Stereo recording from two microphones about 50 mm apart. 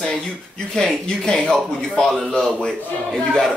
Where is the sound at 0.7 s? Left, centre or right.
Centre.